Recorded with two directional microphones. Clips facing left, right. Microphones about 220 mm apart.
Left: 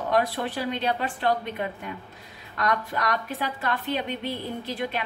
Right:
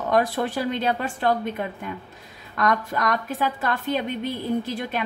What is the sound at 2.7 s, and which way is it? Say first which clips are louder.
A woman's voice: right 2 dB; 45° right (ahead or behind).